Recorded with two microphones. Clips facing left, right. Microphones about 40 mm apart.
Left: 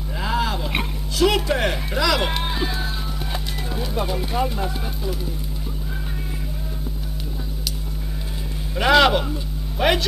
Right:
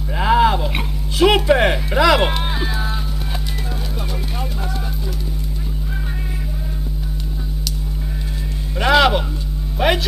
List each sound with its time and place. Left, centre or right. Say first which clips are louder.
0.2 s a sound: right 9 dB; right
1.1 s speech: right 6 dB; right
2.4 s music: right 2 dB; centre
3.9 s speech: left 4 dB; centre
8.7 s speech: right 1 dB; centre